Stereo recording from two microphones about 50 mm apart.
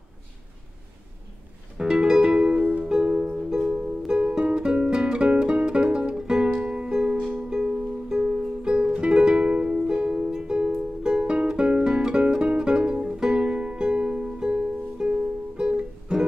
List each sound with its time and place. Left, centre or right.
1.8 s music: centre